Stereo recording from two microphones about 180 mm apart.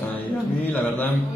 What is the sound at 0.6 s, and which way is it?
Speech, 10° left (ahead or behind).